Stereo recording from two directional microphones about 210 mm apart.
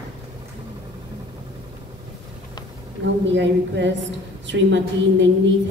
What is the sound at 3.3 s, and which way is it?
A woman's voice, 60° right (ahead or behind).